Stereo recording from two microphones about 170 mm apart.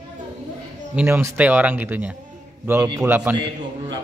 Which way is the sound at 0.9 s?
15° right (ahead or behind).